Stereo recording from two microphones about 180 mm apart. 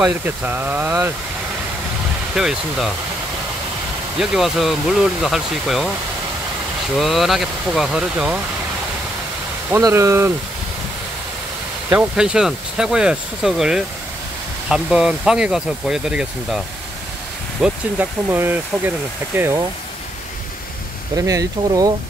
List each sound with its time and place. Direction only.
0.0 s speech: 10° right (ahead or behind)
2.3 s speech: centre (ahead or behind)
4.2 s speech: centre (ahead or behind)
7.0 s speech: centre (ahead or behind)
9.7 s speech: 15° right (ahead or behind)
11.9 s speech: 5° right (ahead or behind)
21.2 s speech: 20° right (ahead or behind)